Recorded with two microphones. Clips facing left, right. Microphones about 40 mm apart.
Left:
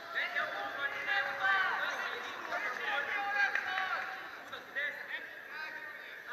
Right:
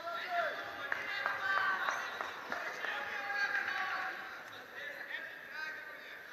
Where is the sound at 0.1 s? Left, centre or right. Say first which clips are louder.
Left 2 dB; left.